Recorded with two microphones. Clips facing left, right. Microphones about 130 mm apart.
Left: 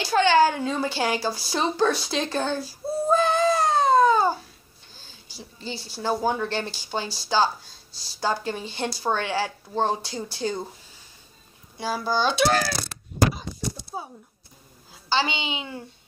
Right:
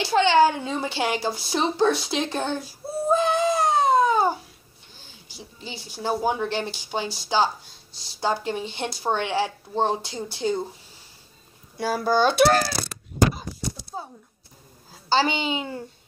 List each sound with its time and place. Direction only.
0.0 s a woman's voice: 25° right (ahead or behind)
3.2 s a sound: 20° right (ahead or behind)
5.3 s a woman's voice: 15° right (ahead or behind)
11.8 s a child's voice: 55° right (ahead or behind)
13.9 s a sound: 10° left (ahead or behind)
14.9 s a woman's voice: 40° right (ahead or behind)